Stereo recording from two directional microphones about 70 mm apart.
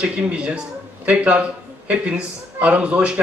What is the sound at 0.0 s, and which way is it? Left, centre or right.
Speech, centre.